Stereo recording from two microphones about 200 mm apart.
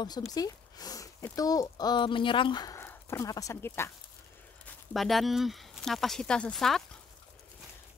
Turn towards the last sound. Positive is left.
turn(degrees=0)  # may be behind; listen again after turning